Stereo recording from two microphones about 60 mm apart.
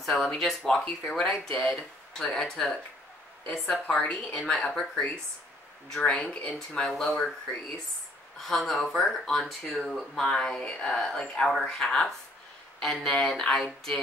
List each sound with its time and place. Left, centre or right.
0.0 s speech: centre
3.8 s a woman's voice: centre
4.4 s speech: centre
6.2 s a woman's voice: left
6.7 s speech: centre
8.4 s speech: centre